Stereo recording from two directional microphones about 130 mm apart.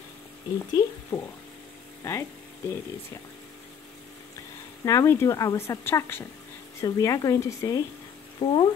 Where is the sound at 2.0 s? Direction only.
20° left (ahead or behind).